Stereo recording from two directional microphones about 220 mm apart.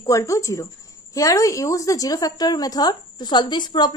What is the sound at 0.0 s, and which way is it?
A woman's voice, 15° left (ahead or behind).